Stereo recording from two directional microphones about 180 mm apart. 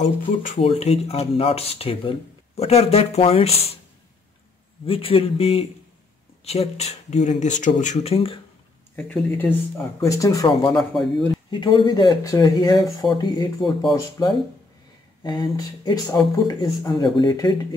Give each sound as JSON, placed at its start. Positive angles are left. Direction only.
{"t": 0.0, "sound": "speech", "side_deg": 45}
{"t": 4.8, "sound": "speech", "side_deg": 30}
{"t": 8.9, "sound": "speech", "side_deg": 10}
{"t": 10.7, "sound": "a man's voice", "side_deg": 0}
{"t": 11.5, "sound": "speech", "side_deg": 25}